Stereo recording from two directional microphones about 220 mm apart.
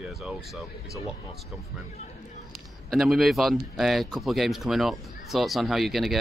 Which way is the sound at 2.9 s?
Centre (ahead or behind).